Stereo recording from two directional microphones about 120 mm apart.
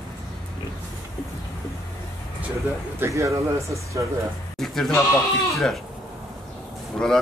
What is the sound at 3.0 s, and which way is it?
Speech, 25° right (ahead or behind).